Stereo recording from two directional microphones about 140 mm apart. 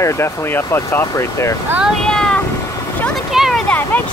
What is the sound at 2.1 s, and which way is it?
Vehicle, 5° left (ahead or behind).